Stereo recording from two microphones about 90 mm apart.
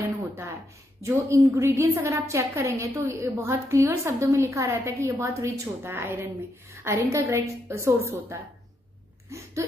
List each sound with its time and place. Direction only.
1.0 s a woman's voice: 30° right (ahead or behind)